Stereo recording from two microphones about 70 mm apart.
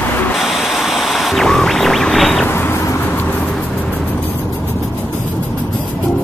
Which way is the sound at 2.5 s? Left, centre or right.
Left.